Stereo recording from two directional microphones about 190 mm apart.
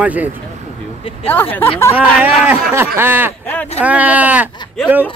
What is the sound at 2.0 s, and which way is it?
Speech, 10° right (ahead or behind).